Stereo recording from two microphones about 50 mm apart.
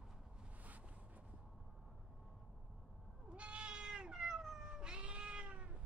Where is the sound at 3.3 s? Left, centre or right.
Right.